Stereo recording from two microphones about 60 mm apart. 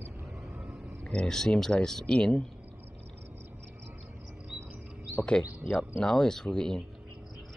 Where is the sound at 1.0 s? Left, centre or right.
Centre.